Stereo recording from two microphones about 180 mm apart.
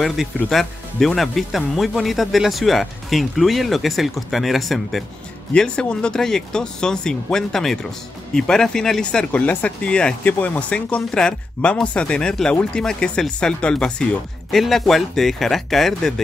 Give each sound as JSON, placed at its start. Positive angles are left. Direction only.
{"t": 0.4, "sound": "speech", "side_deg": 0}